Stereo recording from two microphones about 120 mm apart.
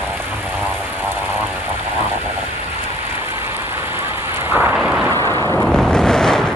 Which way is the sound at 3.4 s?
20° right (ahead or behind).